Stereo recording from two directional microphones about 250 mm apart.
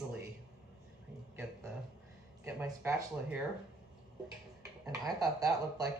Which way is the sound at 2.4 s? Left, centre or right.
Centre.